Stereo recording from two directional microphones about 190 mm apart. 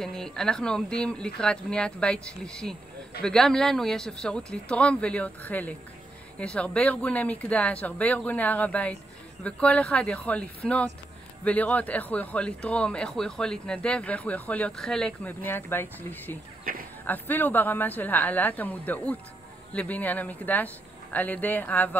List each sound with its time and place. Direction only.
0.0 s speech: 5° left (ahead or behind)
16.7 s speech: 50° right (ahead or behind)
17.0 s speech: 10° left (ahead or behind)